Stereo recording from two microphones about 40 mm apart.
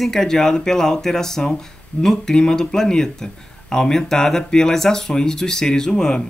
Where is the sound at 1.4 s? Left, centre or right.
Left.